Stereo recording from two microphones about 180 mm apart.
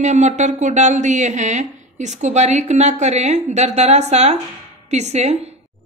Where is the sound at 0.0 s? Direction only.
40° right (ahead or behind).